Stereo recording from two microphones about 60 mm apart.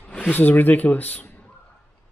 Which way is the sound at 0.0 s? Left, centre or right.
Left.